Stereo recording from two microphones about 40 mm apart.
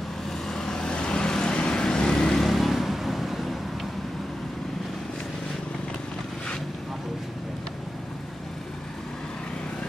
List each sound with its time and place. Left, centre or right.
0.5 s vehicle: centre
2.4 s vehicle: centre